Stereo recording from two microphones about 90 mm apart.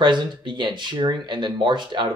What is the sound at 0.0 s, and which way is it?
Speech, 55° right (ahead or behind).